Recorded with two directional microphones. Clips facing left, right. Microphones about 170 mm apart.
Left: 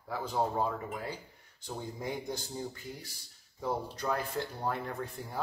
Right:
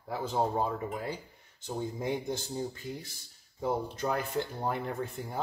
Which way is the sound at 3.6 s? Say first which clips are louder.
Right 3 dB; 20° right (ahead or behind).